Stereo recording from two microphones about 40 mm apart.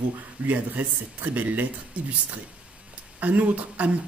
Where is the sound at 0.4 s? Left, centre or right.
Right.